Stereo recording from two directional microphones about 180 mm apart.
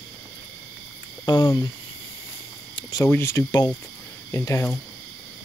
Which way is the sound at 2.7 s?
20° left (ahead or behind).